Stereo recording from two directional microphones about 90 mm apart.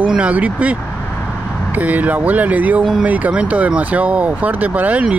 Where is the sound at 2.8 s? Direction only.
5° right (ahead or behind).